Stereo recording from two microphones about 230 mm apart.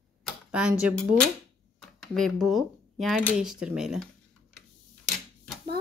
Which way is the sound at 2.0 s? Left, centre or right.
Centre.